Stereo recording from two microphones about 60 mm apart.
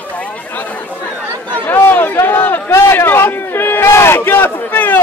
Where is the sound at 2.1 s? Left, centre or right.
Left.